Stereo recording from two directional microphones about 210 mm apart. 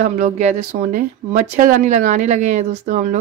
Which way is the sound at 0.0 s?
35° right (ahead or behind).